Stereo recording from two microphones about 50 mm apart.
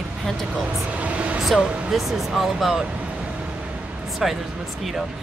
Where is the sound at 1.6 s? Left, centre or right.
Right.